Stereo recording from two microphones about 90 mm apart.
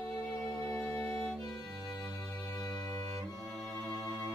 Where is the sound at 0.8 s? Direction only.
20° left (ahead or behind).